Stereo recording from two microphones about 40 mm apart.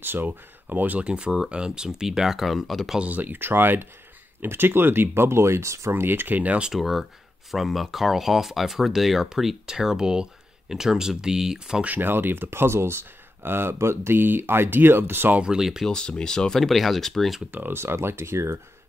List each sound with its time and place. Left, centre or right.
0.0 s speech: right
1.0 s speech: right; by 2.9 s centre
3.1 s speech: right
3.3 s speech: right
6.7 s speech: centre
12.0 s speech: right
15.4 s speech: centre
15.9 s speech: left
16.6 s speech: centre
17.5 s speech: right